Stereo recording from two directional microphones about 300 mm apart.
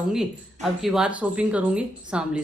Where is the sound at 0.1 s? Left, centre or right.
Centre.